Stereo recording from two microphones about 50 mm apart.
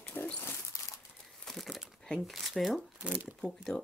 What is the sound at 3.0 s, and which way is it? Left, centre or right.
Speech, right.